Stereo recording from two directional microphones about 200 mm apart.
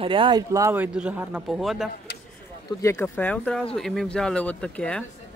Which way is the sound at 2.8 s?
10° left (ahead or behind).